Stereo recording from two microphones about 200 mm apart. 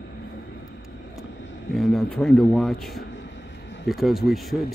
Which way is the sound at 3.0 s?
60° left (ahead or behind).